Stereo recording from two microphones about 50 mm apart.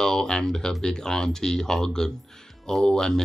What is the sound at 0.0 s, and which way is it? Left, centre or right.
Speech, centre.